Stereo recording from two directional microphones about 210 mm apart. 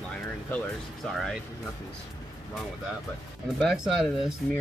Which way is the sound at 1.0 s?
Centre (ahead or behind).